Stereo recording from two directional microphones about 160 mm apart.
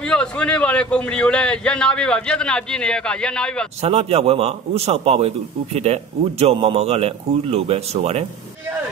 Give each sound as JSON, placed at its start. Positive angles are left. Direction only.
{"t": 0.0, "sound": "a man's voice", "side_deg": 5}
{"t": 3.8, "sound": "a man's voice", "side_deg": -40}